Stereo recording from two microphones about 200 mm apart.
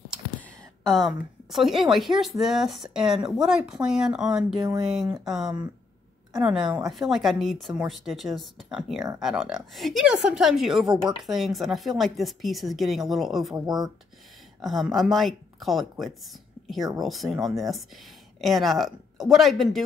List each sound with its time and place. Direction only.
0.8 s a woman's voice: centre (ahead or behind)
4.6 s speech: 15° right (ahead or behind)
4.8 s a woman's voice: centre (ahead or behind)
14.6 s a woman's voice: centre (ahead or behind)